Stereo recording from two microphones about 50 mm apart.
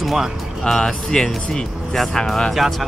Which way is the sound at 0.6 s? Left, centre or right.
Centre.